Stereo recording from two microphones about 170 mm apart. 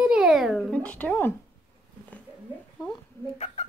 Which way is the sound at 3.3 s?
35° left (ahead or behind).